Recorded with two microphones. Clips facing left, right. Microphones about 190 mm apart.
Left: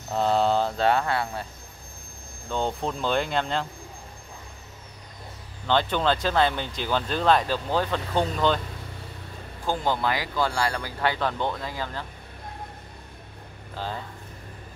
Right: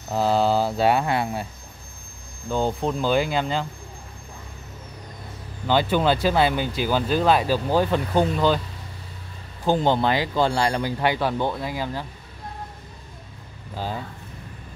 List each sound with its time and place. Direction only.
0.1 s speech: 5° right (ahead or behind)
2.5 s speech: 5° right (ahead or behind)
5.7 s speech: 10° right (ahead or behind)
9.7 s speech: 25° right (ahead or behind)